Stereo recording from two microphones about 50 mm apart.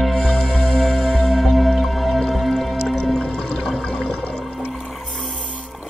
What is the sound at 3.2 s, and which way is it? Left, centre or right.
Music, centre.